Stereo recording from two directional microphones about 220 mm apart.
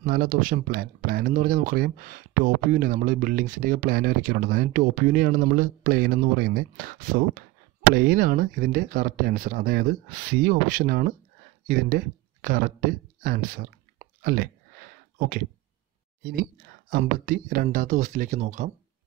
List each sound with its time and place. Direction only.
0.0 s speech: 40° right (ahead or behind)
13.9 s chewing: 40° right (ahead or behind)
16.9 s speech: 40° right (ahead or behind)